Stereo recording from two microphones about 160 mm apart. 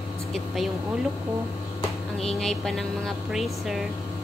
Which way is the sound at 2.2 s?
5° left (ahead or behind).